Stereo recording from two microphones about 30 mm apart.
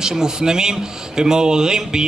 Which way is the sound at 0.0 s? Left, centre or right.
Right.